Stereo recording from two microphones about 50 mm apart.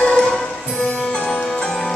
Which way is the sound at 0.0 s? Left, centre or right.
Centre.